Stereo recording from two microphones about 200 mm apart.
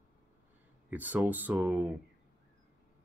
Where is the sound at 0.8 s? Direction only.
10° right (ahead or behind).